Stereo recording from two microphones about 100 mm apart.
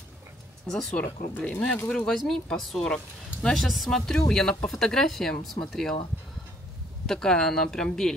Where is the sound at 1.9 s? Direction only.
5° left (ahead or behind).